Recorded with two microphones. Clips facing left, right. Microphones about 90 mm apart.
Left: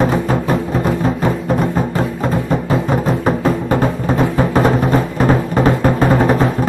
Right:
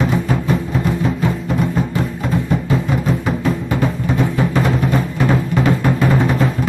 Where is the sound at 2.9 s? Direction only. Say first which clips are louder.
Left 3 dB; 40° left (ahead or behind).